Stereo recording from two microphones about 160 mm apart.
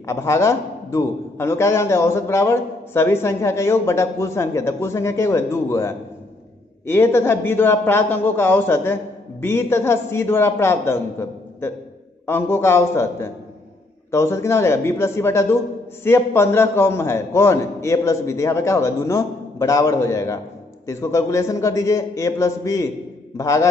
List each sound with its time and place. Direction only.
0.0 s a man's voice: 15° left (ahead or behind)